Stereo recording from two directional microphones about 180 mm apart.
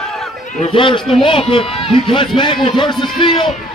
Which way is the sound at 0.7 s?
30° left (ahead or behind).